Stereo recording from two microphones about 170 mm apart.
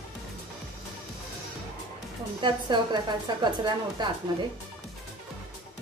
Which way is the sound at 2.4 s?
25° right (ahead or behind).